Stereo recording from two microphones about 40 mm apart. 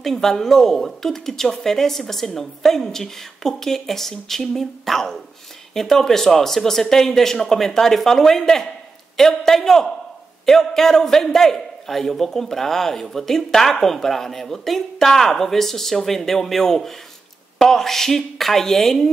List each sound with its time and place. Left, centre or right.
0.0 s a man's voice: centre